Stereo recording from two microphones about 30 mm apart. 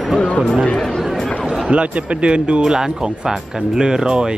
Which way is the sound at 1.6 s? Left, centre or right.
Right.